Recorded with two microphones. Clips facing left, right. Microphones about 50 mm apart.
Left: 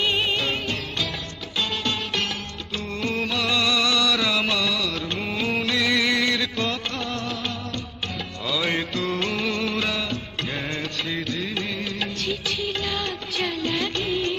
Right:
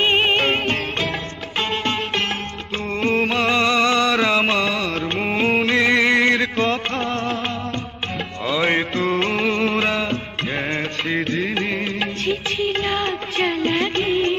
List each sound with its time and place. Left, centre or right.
0.0 s music: right
8.5 s music: right